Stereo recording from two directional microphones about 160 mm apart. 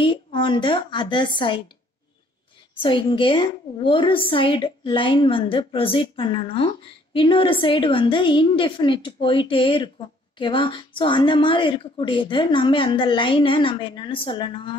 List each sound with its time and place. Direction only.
0.0 s a woman's voice: 30° left (ahead or behind)
2.8 s a woman's voice: 30° left (ahead or behind)